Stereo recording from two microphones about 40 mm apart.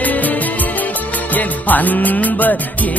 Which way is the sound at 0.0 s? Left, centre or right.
Left.